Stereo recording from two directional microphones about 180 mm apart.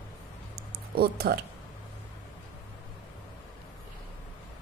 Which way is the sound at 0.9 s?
60° right (ahead or behind).